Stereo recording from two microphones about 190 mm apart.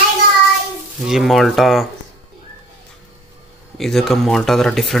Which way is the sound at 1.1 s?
Centre (ahead or behind).